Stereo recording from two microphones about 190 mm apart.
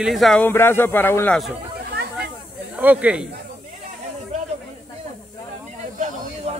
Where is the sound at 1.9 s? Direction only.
55° right (ahead or behind).